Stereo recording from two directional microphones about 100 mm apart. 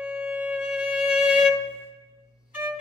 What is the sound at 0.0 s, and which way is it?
Music, 15° right (ahead or behind).